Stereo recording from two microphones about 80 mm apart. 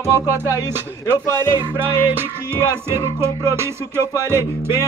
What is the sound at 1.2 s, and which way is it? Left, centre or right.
Speech, left.